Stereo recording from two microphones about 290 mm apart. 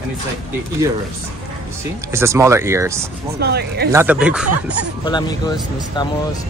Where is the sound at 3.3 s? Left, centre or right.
Right.